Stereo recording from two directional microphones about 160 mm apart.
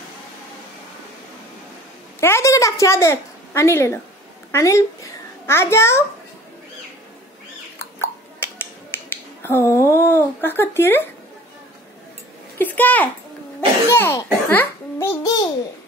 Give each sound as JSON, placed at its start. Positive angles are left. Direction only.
{"t": 2.1, "sound": "a woman's voice", "side_deg": 15}
{"t": 7.8, "sound": "finger snapping", "side_deg": 15}
{"t": 12.5, "sound": "a child's voice", "side_deg": 10}